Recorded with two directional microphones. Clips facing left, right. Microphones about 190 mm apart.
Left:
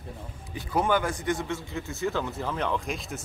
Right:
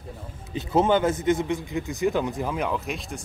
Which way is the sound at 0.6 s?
25° right (ahead or behind).